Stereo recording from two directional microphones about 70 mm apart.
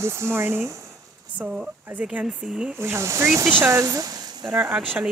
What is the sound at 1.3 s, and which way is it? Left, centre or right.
Speech, centre.